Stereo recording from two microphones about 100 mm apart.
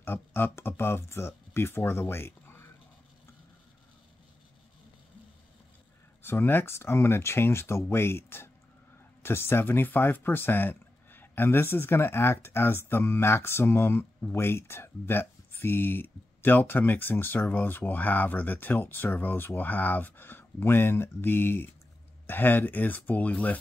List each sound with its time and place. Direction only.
0.0 s speech: 20° left (ahead or behind)
6.2 s speech: 20° left (ahead or behind)